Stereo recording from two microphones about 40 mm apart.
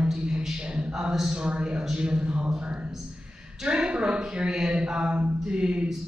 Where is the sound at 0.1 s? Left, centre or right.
Right.